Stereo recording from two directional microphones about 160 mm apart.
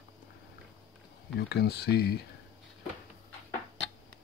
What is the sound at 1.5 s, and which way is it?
Speech, 90° left.